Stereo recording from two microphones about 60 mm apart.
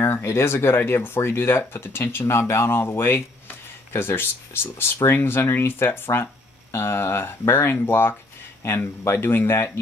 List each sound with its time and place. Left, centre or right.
0.0 s speech: left